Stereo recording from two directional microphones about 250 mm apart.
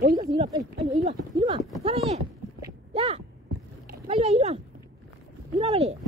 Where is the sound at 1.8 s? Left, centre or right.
Right.